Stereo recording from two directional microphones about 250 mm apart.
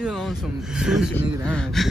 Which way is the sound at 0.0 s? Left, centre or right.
Centre.